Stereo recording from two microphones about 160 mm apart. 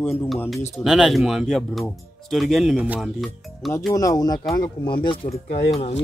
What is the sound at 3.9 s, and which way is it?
Speech, 20° left (ahead or behind).